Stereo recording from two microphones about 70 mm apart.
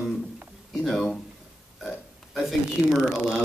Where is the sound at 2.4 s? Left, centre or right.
Centre.